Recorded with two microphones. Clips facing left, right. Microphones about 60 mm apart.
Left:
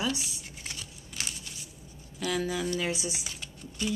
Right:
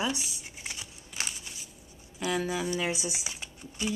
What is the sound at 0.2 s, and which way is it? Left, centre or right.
Computer keyboard, centre.